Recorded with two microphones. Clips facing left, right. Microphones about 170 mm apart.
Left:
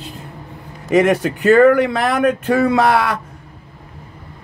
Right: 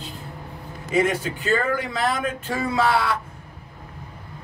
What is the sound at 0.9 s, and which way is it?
Speech, 70° left (ahead or behind).